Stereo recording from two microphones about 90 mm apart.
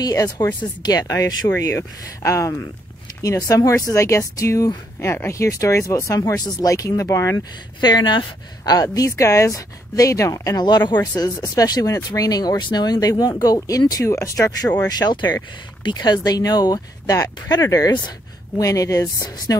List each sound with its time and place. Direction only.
0.0 s speech: 40° left (ahead or behind)
7.8 s speech: 55° left (ahead or behind)
8.7 s speech: 40° left (ahead or behind)
10.6 s speech: 55° left (ahead or behind)
11.0 s speech: 45° left (ahead or behind)
14.8 s speech: 50° left (ahead or behind)